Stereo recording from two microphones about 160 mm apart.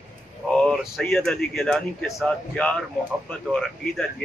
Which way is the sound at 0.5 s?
5° left (ahead or behind).